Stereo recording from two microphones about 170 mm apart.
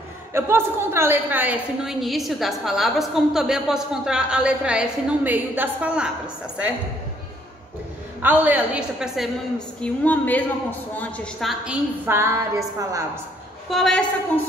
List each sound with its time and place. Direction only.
0.3 s a woman's voice: 15° right (ahead or behind)
8.2 s a woman's voice: 10° right (ahead or behind)
9.8 s a woman's voice: 10° left (ahead or behind)
12.2 s a woman's voice: 15° right (ahead or behind)
13.7 s a woman's voice: centre (ahead or behind)